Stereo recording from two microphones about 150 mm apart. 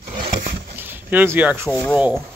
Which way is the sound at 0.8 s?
15° right (ahead or behind).